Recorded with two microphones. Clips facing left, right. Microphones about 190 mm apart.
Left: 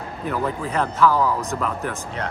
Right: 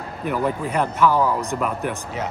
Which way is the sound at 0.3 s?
15° right (ahead or behind).